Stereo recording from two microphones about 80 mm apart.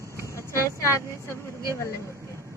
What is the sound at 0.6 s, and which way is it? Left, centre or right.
Speech, left.